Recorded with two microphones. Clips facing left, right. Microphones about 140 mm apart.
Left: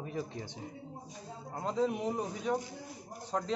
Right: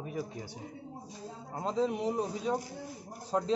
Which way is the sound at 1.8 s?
5° left (ahead or behind).